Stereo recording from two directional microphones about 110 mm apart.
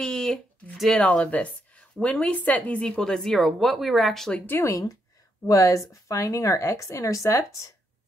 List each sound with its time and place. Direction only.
0.0 s speech: 5° left (ahead or behind)
4.5 s speech: 20° left (ahead or behind)
5.5 s speech: 30° left (ahead or behind)